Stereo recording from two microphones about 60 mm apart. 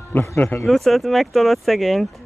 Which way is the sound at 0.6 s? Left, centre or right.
Centre.